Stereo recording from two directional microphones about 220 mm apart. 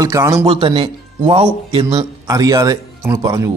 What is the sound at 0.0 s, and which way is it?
A man's voice, 15° right (ahead or behind).